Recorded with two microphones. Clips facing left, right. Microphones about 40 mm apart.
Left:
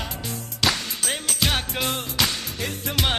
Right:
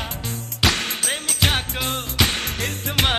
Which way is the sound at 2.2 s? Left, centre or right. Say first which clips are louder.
Right 4 dB; right.